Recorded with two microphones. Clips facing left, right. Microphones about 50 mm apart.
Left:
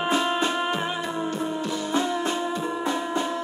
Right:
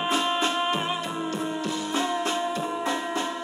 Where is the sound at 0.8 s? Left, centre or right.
Centre.